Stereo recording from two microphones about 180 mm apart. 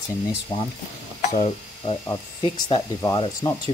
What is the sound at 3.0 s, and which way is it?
Sizzle, 20° left (ahead or behind).